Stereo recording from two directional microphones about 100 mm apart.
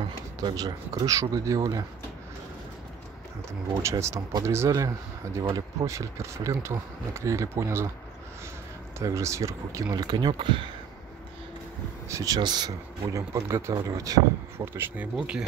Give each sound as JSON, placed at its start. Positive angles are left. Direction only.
{"t": 0.4, "sound": "speech", "side_deg": -45}
{"t": 3.8, "sound": "speech", "side_deg": -30}
{"t": 9.0, "sound": "speech", "side_deg": -30}
{"t": 12.1, "sound": "speech", "side_deg": -35}
{"t": 12.4, "sound": "speech", "side_deg": -45}
{"t": 14.7, "sound": "speech", "side_deg": -20}
{"t": 15.1, "sound": "speech", "side_deg": -10}